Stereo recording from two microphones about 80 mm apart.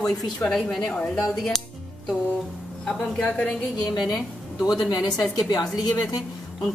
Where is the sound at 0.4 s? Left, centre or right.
Centre.